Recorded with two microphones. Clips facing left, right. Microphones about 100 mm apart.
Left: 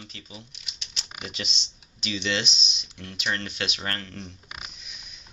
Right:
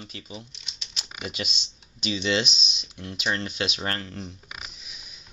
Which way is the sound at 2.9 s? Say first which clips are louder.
Right 2 dB; 15° right (ahead or behind).